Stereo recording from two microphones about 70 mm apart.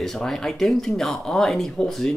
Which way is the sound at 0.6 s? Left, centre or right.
Centre.